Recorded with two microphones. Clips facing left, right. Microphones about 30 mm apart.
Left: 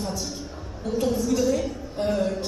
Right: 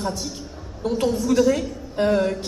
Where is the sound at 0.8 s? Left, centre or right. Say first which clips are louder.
Right 3 dB; right.